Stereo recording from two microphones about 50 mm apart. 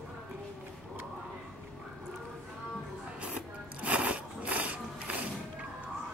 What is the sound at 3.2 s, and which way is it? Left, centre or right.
Music, right.